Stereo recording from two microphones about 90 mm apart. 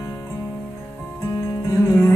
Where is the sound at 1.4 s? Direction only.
30° left (ahead or behind).